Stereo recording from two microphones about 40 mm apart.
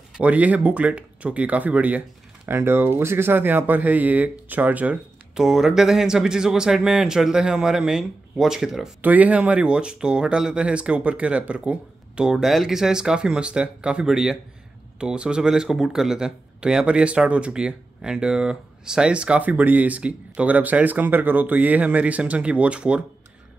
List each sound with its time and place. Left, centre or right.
0.2 s speech: right
2.4 s speech: right
5.3 s speech: centre
9.0 s speech: right
9.6 s speech: right
12.3 s speech: centre; by 14.0 s right
14.0 s speech: centre
19.6 s speech: right